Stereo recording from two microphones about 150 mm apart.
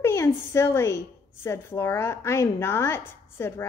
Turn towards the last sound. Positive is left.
turn(degrees=15)  # may be behind; listen again after turning